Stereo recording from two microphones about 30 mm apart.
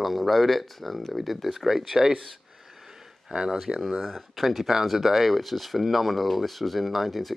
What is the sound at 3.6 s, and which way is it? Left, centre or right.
Speech, centre.